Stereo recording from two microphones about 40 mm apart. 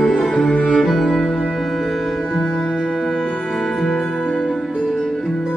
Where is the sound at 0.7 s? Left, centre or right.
Centre.